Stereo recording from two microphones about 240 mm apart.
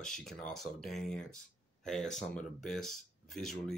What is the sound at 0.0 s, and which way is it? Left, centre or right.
Speech, centre.